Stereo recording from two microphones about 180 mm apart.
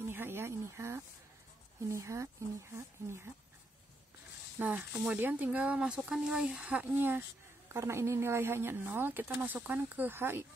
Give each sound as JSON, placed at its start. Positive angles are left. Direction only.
{"t": 0.0, "sound": "a sound", "side_deg": -15}
{"t": 1.9, "sound": "speech", "side_deg": -15}
{"t": 4.6, "sound": "speech", "side_deg": -10}